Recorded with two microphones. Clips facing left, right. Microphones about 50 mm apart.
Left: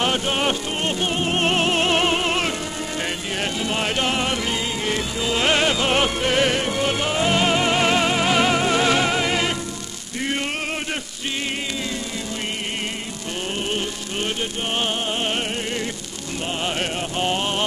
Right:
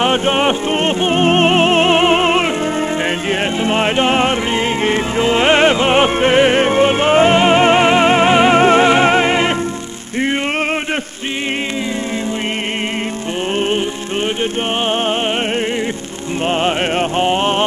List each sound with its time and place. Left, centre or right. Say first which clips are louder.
0.0 s music: right 7 dB; right
3.6 s music: right 9 dB; right
16.4 s music: right 9 dB; right
17.2 s a sound: right 6 dB; right